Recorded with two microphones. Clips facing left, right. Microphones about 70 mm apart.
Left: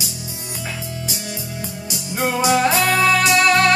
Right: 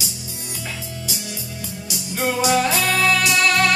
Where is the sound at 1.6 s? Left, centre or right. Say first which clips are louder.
Left 2 dB; left.